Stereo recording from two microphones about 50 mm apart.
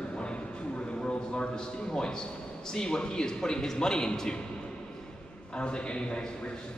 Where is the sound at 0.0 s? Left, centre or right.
Centre.